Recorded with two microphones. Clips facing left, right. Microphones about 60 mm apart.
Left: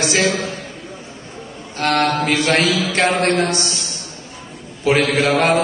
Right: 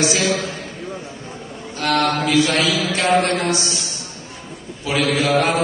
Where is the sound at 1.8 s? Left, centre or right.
Left.